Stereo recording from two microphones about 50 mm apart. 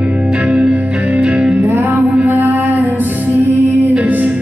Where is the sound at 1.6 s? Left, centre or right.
Right.